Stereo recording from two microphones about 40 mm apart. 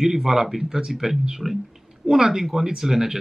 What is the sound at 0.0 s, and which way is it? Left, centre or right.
Speech, centre.